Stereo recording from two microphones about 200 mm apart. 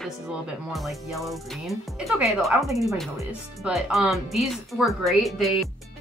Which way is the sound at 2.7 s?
15° right (ahead or behind).